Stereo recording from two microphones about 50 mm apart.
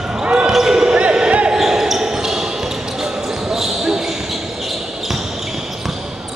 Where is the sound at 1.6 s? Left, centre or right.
Centre.